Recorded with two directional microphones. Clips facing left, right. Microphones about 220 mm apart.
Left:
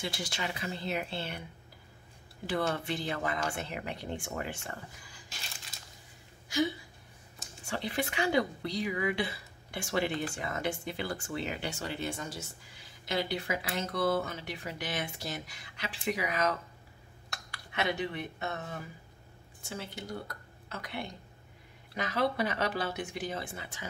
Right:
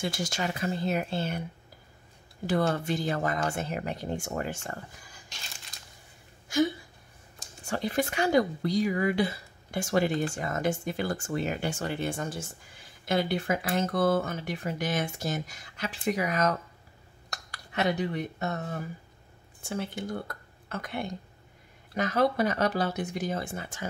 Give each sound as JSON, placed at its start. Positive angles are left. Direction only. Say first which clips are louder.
{"t": 0.0, "sound": "a woman's voice", "louder": "right 5 dB", "side_deg": -45}
{"t": 2.4, "sound": "a woman's voice", "louder": "right 5 dB", "side_deg": -45}
{"t": 7.6, "sound": "a woman's voice", "louder": "right 5 dB", "side_deg": -45}
{"t": 19.6, "sound": "a woman's voice", "louder": "right 7 dB", "side_deg": -55}